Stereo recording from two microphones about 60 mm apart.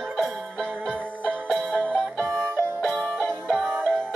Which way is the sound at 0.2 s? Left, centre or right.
Centre.